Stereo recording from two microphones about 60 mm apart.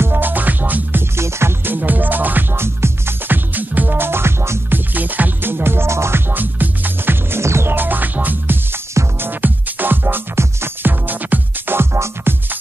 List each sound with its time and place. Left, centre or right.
0.0 s music: right
1.1 s music: right
4.6 s music: right
7.7 s music: right